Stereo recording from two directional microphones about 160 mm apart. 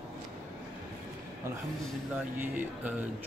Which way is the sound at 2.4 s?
10° right (ahead or behind).